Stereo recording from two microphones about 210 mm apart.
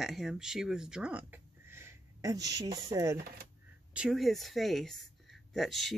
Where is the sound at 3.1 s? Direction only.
45° right (ahead or behind).